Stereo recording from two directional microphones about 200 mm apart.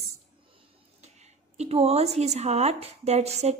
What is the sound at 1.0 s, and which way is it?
Speech, 35° right (ahead or behind).